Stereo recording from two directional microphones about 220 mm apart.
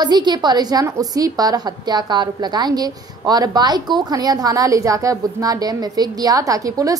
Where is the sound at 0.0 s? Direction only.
20° right (ahead or behind).